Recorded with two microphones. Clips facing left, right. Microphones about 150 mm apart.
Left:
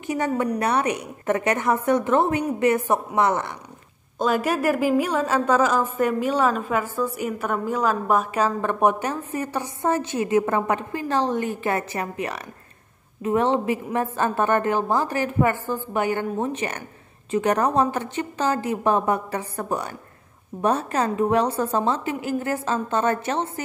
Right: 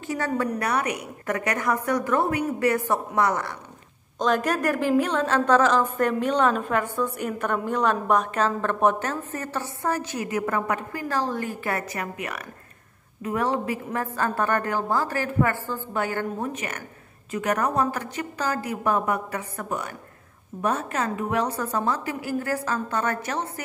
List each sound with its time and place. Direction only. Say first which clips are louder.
0.0 s a woman's voice: left 3 dB; 20° left (ahead or behind)
4.2 s a woman's voice: left 1 dB; 10° left (ahead or behind); by 23.6 s 25° left (ahead or behind)